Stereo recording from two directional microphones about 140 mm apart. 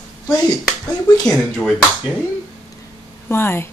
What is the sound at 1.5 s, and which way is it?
Speech, 5° left (ahead or behind).